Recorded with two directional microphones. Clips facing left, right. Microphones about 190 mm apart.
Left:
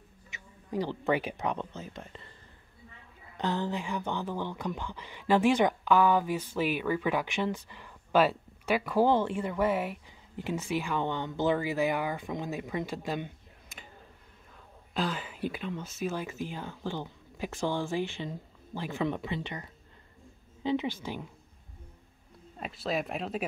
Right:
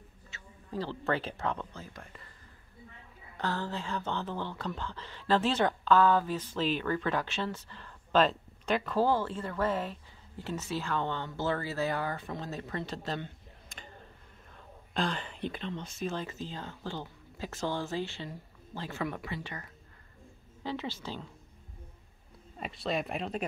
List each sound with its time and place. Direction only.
0.3 s speech: 15° left (ahead or behind)
3.3 s speech: 20° left (ahead or behind)
15.0 s speech: 5° left (ahead or behind)
22.6 s speech: centre (ahead or behind)